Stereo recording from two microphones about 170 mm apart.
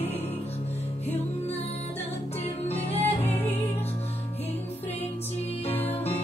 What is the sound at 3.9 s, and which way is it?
Music, 35° left (ahead or behind).